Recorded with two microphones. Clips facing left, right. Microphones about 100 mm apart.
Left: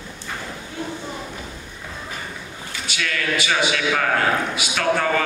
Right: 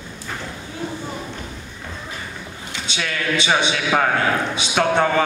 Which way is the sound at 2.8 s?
25° right (ahead or behind).